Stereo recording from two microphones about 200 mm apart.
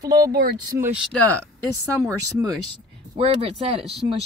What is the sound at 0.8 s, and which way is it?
Speech, 5° right (ahead or behind).